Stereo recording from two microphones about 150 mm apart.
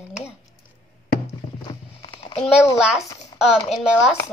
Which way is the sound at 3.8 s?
5° right (ahead or behind).